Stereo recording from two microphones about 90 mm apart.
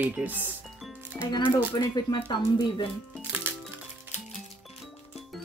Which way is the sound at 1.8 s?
50° left (ahead or behind).